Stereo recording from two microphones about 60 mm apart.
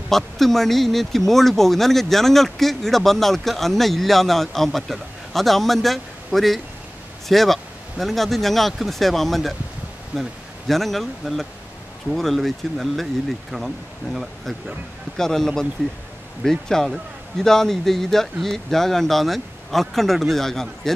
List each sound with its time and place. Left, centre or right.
0.1 s speech: centre
15.1 s speech: centre